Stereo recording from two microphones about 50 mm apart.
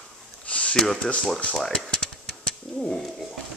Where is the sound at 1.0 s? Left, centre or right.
Left.